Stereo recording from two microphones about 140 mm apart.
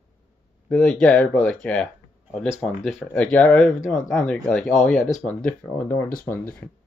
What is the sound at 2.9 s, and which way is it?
Speech, 10° left (ahead or behind).